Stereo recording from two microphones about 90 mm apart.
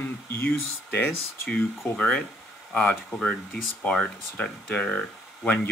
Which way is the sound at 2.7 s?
15° left (ahead or behind).